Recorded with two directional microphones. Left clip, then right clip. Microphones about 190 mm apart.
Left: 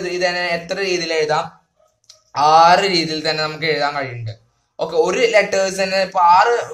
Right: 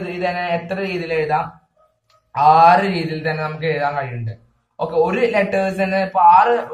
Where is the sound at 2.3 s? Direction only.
55° left (ahead or behind).